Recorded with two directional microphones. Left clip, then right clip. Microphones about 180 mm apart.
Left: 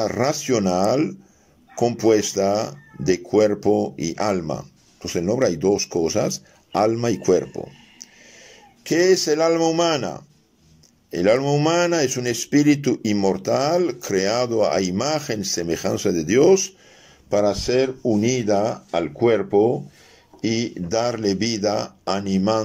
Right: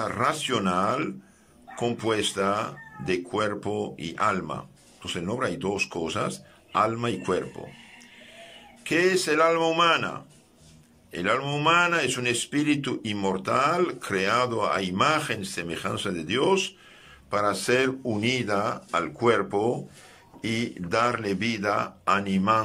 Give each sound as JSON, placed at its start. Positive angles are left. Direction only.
{"t": 0.0, "sound": "speech", "side_deg": 40}
{"t": 8.8, "sound": "speech", "side_deg": 40}